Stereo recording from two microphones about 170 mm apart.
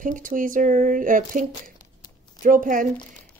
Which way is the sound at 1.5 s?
25° left (ahead or behind).